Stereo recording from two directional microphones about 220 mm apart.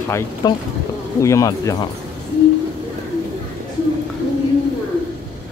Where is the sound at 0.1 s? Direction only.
15° left (ahead or behind).